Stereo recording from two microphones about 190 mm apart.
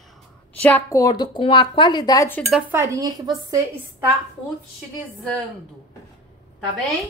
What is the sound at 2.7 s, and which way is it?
Speech, 15° right (ahead or behind).